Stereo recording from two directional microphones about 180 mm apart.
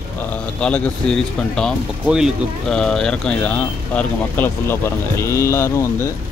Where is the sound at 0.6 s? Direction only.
5° left (ahead or behind).